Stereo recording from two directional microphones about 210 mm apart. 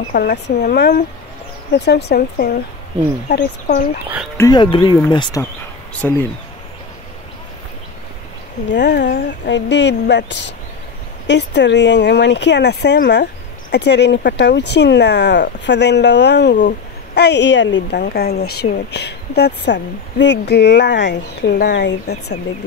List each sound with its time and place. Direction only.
0.1 s speech: 50° left (ahead or behind)
4.4 s speech: 20° left (ahead or behind)
5.9 s speech: 10° left (ahead or behind)
8.7 s speech: 55° left (ahead or behind)
18.0 s speech: 50° left (ahead or behind)